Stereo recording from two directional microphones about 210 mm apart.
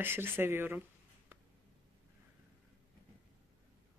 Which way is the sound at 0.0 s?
10° right (ahead or behind).